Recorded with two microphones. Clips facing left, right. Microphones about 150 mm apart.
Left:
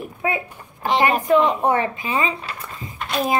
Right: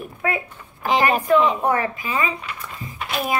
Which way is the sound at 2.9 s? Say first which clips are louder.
Left 2 dB; 5° right (ahead or behind).